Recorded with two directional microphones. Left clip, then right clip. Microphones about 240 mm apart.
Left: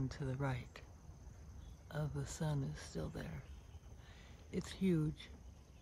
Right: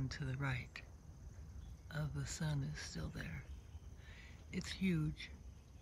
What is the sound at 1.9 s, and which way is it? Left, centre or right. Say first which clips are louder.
Speech: left 1 dB; centre.